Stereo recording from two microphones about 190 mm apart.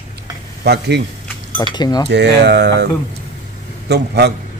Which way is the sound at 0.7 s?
60° right (ahead or behind).